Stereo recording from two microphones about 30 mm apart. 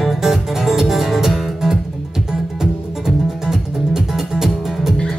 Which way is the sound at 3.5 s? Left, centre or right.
Centre.